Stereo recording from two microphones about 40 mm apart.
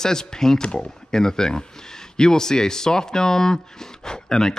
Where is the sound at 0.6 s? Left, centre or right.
Left.